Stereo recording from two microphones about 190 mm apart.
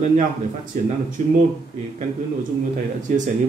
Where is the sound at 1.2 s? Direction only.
45° right (ahead or behind).